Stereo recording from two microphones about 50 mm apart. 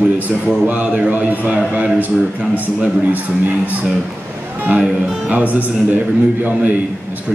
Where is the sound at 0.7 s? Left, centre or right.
Right.